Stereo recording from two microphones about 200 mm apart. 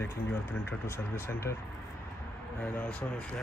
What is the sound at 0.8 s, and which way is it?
Speech, 15° left (ahead or behind).